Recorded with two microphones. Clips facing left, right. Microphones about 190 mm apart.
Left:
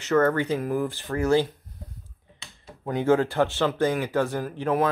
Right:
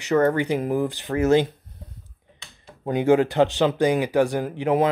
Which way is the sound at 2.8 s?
20° right (ahead or behind).